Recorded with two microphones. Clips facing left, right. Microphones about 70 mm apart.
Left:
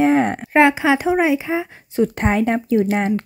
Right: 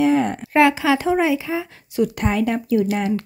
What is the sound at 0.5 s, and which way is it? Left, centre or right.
Speech, left.